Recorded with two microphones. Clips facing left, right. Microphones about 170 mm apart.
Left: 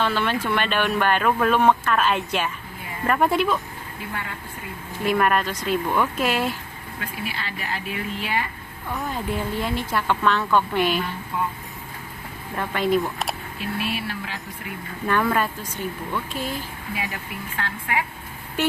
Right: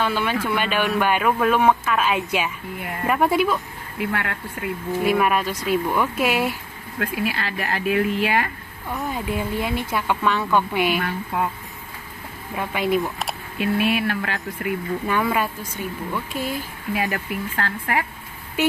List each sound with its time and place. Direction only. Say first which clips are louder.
0.0 s speech: right 1 dB; 10° right (ahead or behind)
4.0 s speech: right 8 dB; 70° right (ahead or behind)
5.0 s speech: even; 5° right (ahead or behind)
7.0 s speech: right 7 dB; 55° right (ahead or behind)
9.1 s speech: right 1 dB; 10° right (ahead or behind)
12.5 s speech: even; 10° right (ahead or behind)
13.6 s speech: right 9 dB; 60° right (ahead or behind)
15.0 s speech: left 1 dB; 10° right (ahead or behind)
16.9 s speech: right 7 dB; 50° right (ahead or behind)